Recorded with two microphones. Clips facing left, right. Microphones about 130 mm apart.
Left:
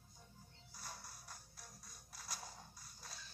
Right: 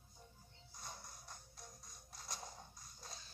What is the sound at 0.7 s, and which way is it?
Music, 20° right (ahead or behind).